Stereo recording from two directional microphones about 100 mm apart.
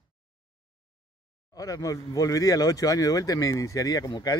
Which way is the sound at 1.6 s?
35° left (ahead or behind).